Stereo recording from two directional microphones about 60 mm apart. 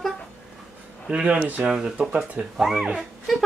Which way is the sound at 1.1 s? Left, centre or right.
Centre.